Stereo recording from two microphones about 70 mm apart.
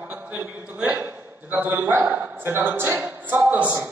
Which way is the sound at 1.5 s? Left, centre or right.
Right.